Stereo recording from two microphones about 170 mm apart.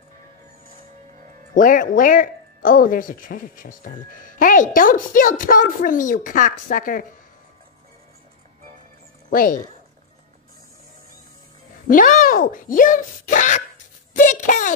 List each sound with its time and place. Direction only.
1.5 s speech: 55° left (ahead or behind)
11.9 s speech: 55° left (ahead or behind)
14.1 s a sound: 50° left (ahead or behind)